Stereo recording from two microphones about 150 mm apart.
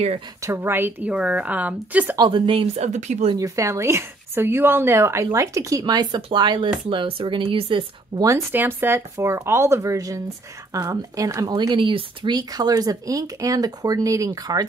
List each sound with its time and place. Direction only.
0.4 s a woman's voice: 15° right (ahead or behind)
2.1 s a woman's voice: 35° right (ahead or behind)
2.8 s speech: 50° right (ahead or behind)
3.3 s a woman's voice: 20° right (ahead or behind); by 7.8 s 35° right (ahead or behind)
8.2 s a woman's voice: 20° right (ahead or behind)